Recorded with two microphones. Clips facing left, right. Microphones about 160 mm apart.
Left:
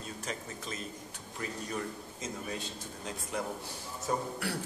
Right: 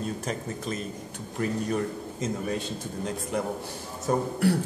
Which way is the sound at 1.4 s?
60° right (ahead or behind).